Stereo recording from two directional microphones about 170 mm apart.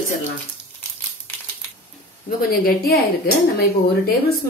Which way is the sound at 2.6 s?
60° left (ahead or behind).